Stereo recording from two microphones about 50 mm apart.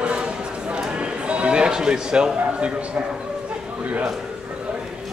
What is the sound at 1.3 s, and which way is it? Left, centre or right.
Music, right.